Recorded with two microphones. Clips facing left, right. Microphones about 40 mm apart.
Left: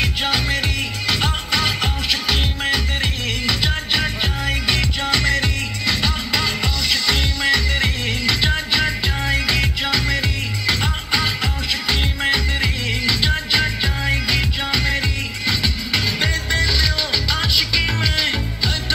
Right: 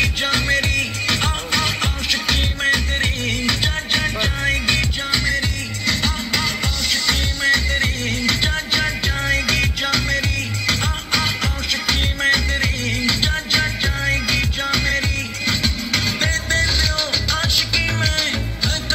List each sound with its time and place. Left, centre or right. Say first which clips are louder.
0.0 s music: right 1 dB; centre